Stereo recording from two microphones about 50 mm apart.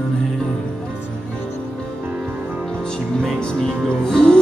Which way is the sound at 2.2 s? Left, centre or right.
Right.